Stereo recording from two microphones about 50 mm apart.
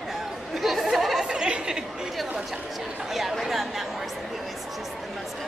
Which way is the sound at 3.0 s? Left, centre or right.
Centre.